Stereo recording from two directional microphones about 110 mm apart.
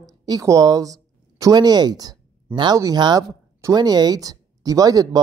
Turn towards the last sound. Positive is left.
turn(degrees=-35)  # may be behind; listen again after turning